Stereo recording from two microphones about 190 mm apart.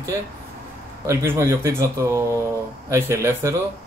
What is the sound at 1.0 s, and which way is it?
Speech, 15° right (ahead or behind).